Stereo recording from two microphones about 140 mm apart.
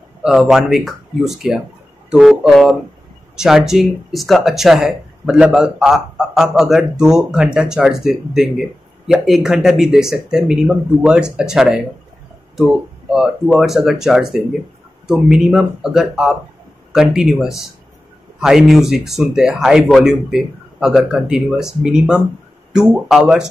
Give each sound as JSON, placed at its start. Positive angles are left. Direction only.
{"t": 0.2, "sound": "speech", "side_deg": -5}
{"t": 13.1, "sound": "speech", "side_deg": -5}